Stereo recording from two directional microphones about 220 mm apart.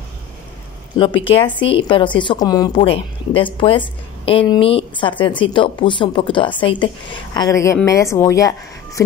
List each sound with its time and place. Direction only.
0.9 s a woman's voice: 20° left (ahead or behind)